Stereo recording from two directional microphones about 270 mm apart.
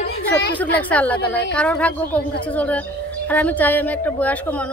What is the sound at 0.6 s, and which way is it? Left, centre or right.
A woman's voice, centre.